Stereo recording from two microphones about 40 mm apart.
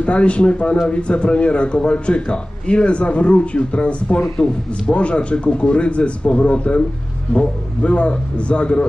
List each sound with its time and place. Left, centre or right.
0.0 s a man's voice: left